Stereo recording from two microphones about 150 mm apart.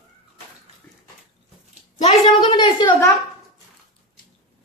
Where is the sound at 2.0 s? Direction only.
40° left (ahead or behind).